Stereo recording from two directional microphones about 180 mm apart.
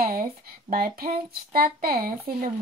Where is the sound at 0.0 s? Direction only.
50° right (ahead or behind).